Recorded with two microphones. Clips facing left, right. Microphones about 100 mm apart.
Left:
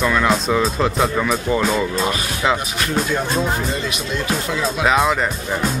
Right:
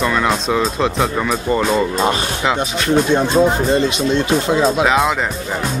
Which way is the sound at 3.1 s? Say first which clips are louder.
Right 7 dB; 25° right (ahead or behind).